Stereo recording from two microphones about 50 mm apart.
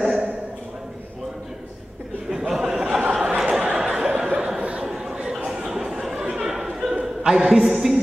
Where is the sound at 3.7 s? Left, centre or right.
Centre.